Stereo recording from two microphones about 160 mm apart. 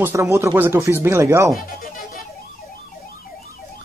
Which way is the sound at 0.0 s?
15° right (ahead or behind).